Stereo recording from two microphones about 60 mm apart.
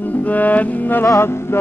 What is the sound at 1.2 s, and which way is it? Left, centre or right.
Speech, left.